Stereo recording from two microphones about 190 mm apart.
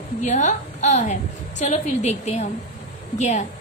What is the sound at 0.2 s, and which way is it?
A woman's voice, 40° left (ahead or behind).